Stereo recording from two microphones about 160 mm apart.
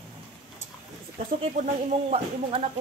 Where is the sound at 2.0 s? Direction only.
40° right (ahead or behind).